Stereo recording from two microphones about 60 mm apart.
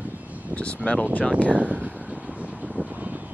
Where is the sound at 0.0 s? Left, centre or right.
Right.